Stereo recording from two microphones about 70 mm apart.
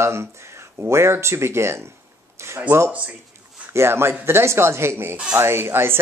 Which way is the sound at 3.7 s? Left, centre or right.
Right.